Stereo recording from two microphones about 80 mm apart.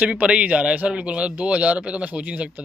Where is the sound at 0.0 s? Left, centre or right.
Centre.